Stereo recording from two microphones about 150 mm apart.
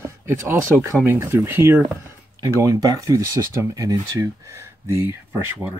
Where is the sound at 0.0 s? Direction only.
15° right (ahead or behind).